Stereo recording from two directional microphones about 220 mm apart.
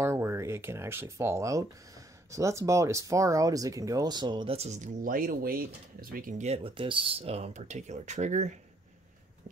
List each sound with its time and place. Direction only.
0.0 s speech: 10° right (ahead or behind); by 8.5 s 30° right (ahead or behind)